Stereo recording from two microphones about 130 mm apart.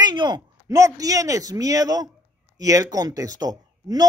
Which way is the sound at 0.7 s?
25° right (ahead or behind).